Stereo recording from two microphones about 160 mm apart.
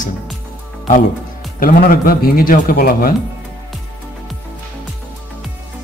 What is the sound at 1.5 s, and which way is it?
Speech, 60° left (ahead or behind).